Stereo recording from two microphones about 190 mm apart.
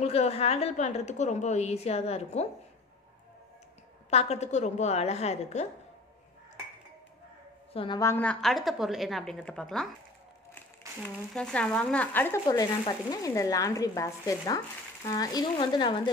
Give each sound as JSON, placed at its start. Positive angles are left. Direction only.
{"t": 0.0, "sound": "a woman's voice", "side_deg": 35}
{"t": 4.1, "sound": "a woman's voice", "side_deg": 35}
{"t": 7.7, "sound": "a woman's voice", "side_deg": 25}
{"t": 8.0, "sound": "a woman's voice", "side_deg": 10}
{"t": 11.0, "sound": "speech", "side_deg": 5}
{"t": 12.4, "sound": "speech", "side_deg": 20}